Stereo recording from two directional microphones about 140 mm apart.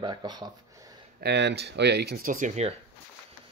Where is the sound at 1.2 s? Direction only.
90° right.